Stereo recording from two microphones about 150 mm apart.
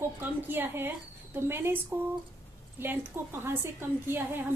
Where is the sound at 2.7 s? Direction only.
15° right (ahead or behind).